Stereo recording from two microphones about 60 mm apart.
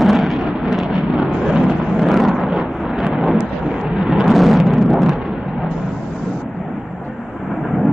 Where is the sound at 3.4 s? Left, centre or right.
Centre.